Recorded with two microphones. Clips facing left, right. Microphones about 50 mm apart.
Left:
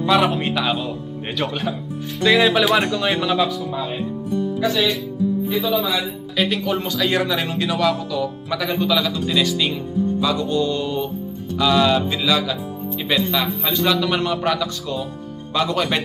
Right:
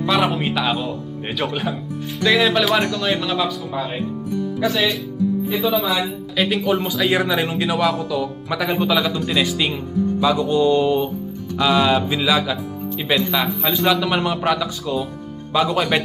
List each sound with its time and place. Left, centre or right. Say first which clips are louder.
0.0 s speech: left 1 dB; centre
2.8 s speech: even; centre
3.1 s speech: left 1 dB; centre
3.7 s speech: right 1 dB; centre